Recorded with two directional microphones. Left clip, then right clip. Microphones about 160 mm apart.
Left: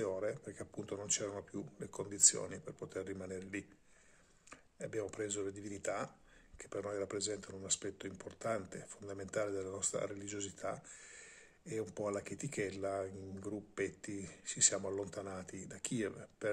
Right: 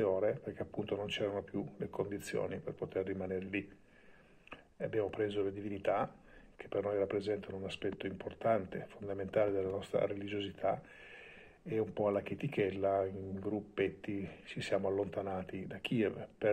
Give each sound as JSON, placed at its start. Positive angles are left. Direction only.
{"t": 0.0, "sound": "speech", "side_deg": 25}
{"t": 1.9, "sound": "speech", "side_deg": 40}
{"t": 2.3, "sound": "speech", "side_deg": 30}
{"t": 11.9, "sound": "speech", "side_deg": 25}